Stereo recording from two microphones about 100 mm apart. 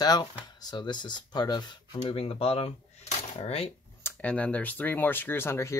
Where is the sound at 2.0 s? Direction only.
70° left (ahead or behind).